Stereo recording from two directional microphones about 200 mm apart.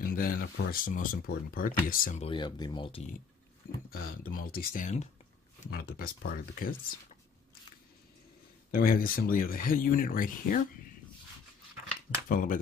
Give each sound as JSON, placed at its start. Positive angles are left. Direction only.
{"t": 0.1, "sound": "speech", "side_deg": 45}
{"t": 2.2, "sound": "speech", "side_deg": 20}
{"t": 3.9, "sound": "speech", "side_deg": 45}
{"t": 8.7, "sound": "speech", "side_deg": 45}
{"t": 12.3, "sound": "speech", "side_deg": 45}